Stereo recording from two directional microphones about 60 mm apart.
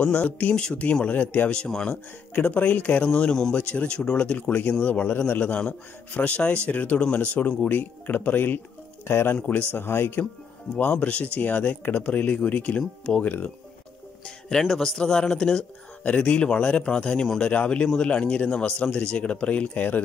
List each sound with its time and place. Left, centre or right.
0.0 s a man's voice: left
1.5 s speech: centre
2.3 s a man's voice: left
3.0 s a man's voice: centre; by 5.6 s left
5.6 s a man's voice: left
10.8 s speech: left
14.2 s speech: centre; by 20.0 s left